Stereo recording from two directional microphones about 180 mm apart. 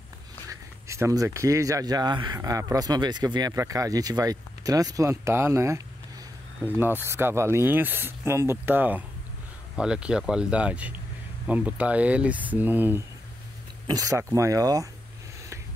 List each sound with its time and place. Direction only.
0.5 s speech: 15° right (ahead or behind)